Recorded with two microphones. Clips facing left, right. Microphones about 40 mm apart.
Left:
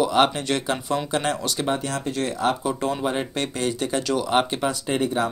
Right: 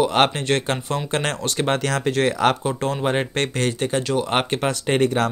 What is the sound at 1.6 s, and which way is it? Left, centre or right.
Speech, right.